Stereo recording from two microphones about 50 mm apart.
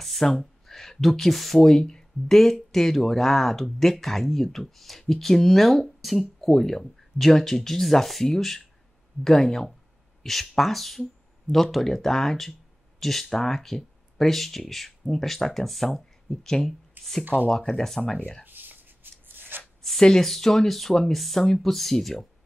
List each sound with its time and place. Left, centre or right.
0.0 s speech: centre
17.2 s speech: right
17.5 s speech: centre
18.4 s shuffling cards: right
20.0 s speech: centre